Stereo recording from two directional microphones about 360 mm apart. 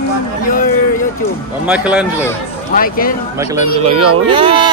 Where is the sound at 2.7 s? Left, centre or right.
Left.